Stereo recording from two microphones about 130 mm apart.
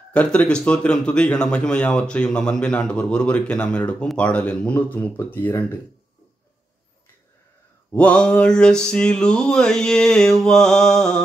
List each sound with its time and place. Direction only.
0.1 s speech: 10° left (ahead or behind)
7.9 s mantra: 10° left (ahead or behind)